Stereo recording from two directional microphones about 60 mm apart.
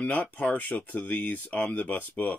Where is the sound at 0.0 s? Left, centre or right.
Left.